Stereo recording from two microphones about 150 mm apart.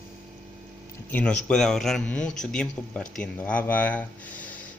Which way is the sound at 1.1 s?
5° left (ahead or behind).